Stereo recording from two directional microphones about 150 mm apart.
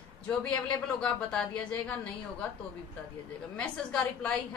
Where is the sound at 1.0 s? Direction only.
5° left (ahead or behind).